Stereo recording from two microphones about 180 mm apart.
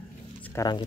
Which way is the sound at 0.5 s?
20° left (ahead or behind).